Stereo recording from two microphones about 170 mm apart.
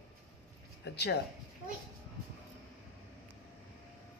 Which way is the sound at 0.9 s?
75° left (ahead or behind).